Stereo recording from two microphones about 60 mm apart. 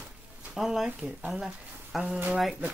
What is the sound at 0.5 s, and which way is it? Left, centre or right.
Speech, centre.